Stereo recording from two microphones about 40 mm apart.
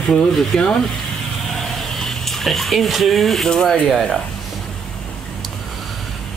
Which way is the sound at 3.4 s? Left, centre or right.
Centre.